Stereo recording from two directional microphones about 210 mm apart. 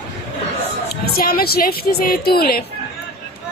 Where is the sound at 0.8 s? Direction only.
45° left (ahead or behind).